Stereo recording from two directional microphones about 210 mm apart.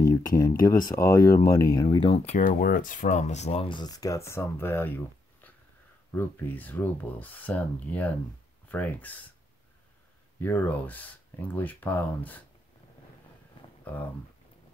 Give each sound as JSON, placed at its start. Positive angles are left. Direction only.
{"t": 0.4, "sound": "speech", "side_deg": 15}
{"t": 10.4, "sound": "speech", "side_deg": 10}